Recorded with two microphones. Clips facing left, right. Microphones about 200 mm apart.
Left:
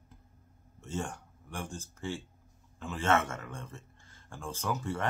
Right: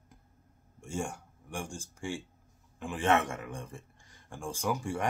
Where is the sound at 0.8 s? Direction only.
10° right (ahead or behind).